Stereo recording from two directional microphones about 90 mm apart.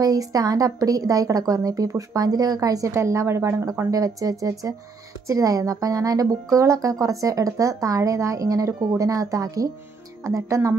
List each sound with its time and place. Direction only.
0.0 s a woman's voice: 45° right (ahead or behind)
2.9 s a woman's voice: 30° right (ahead or behind)
3.9 s speech: 40° right (ahead or behind)